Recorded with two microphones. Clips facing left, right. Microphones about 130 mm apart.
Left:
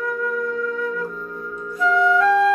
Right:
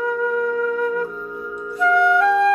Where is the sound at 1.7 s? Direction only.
5° right (ahead or behind).